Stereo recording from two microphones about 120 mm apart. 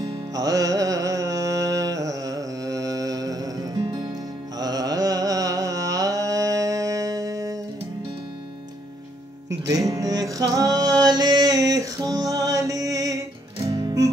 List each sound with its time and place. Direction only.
0.0 s music: 30° right (ahead or behind)
4.6 s carnatic music: 35° right (ahead or behind)
9.5 s music: 30° right (ahead or behind)